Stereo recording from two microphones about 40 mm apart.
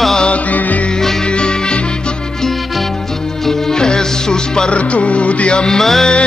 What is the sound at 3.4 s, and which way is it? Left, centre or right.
Music, centre.